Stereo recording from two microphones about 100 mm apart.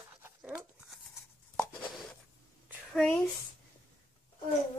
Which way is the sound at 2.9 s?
10° left (ahead or behind).